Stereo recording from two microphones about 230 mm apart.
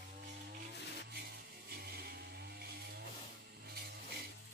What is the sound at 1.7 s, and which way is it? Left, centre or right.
Music, right.